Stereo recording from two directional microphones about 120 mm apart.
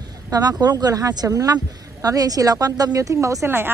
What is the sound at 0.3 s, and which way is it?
Speech, 30° right (ahead or behind).